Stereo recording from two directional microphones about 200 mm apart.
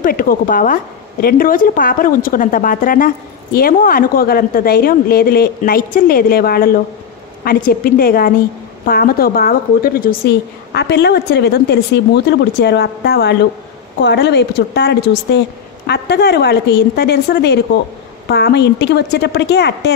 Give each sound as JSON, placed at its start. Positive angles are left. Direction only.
{"t": 0.0, "sound": "a woman's voice", "side_deg": 45}